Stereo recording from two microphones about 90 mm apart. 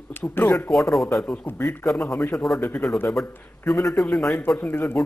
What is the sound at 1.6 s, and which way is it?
Speech, 30° left (ahead or behind).